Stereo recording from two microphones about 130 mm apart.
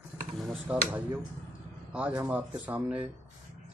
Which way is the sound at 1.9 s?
10° right (ahead or behind).